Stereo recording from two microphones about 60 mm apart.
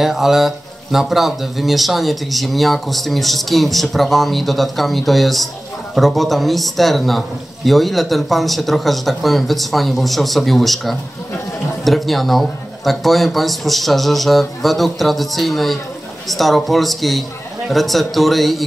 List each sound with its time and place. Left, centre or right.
0.0 s speech: centre